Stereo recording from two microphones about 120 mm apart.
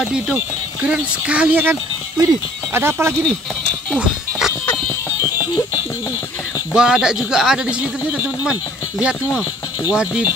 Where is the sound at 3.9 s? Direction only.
5° right (ahead or behind).